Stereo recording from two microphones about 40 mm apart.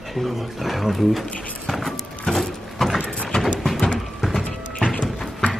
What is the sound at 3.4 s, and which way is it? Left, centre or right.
Clip-clop, centre.